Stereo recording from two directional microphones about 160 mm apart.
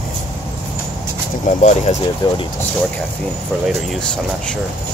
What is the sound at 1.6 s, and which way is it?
Speech, 50° left (ahead or behind).